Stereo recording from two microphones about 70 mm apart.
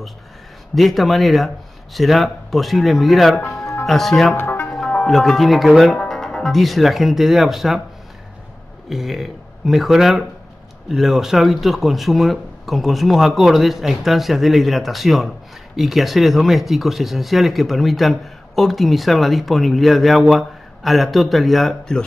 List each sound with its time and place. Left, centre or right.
0.7 s speech: centre
4.4 s music: left
4.6 s speech: centre
8.8 s speech: centre